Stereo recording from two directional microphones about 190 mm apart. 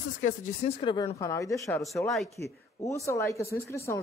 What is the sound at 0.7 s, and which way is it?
Speech, 25° left (ahead or behind).